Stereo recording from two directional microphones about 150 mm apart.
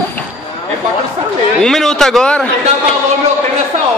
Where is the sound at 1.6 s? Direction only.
5° left (ahead or behind).